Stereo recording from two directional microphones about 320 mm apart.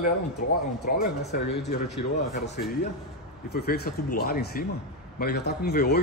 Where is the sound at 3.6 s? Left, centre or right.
Left.